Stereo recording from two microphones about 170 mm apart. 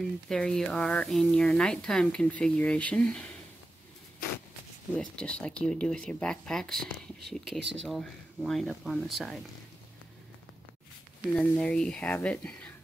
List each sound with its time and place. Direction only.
0.3 s speech: 5° left (ahead or behind)
4.9 s speech: 5° left (ahead or behind)
11.3 s speech: 5° left (ahead or behind)